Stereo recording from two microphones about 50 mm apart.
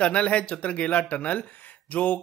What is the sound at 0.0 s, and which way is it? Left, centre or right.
Speech, left.